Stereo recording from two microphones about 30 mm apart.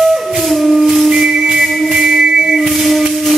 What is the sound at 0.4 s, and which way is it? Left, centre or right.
Music, centre.